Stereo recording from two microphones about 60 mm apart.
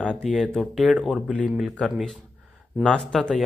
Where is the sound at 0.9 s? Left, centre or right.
Centre.